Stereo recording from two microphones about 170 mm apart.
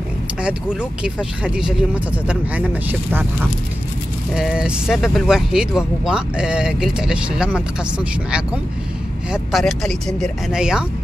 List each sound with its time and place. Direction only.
1.0 s speech: 5° right (ahead or behind)
4.3 s speech: 5° right (ahead or behind)